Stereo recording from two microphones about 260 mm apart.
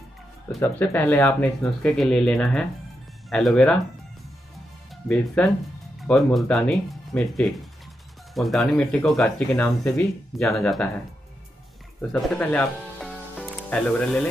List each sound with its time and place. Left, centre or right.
0.6 s speech: centre
5.0 s speech: centre
12.1 s speech: centre